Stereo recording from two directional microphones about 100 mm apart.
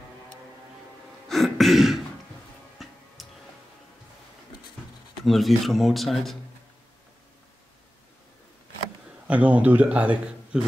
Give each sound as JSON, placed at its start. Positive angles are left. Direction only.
{"t": 1.3, "sound": "throat clearing", "side_deg": 0}
{"t": 3.2, "sound": "tick", "side_deg": 0}
{"t": 5.2, "sound": "speech", "side_deg": 0}
{"t": 9.3, "sound": "a man's voice", "side_deg": -15}